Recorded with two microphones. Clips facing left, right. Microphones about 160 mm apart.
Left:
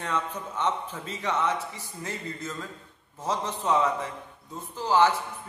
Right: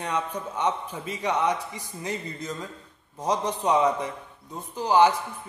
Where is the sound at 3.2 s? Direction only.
15° right (ahead or behind).